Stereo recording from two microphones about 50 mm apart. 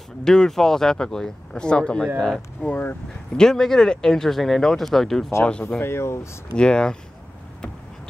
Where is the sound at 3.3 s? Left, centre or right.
Centre.